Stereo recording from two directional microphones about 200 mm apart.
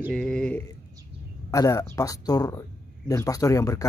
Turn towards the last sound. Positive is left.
turn(degrees=15)  # may be behind; listen again after turning